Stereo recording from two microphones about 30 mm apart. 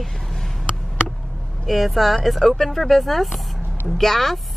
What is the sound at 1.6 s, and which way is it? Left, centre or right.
Speech, centre.